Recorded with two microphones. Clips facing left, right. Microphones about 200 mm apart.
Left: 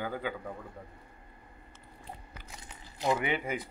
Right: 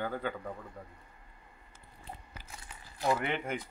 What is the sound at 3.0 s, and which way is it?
Speech, 15° left (ahead or behind).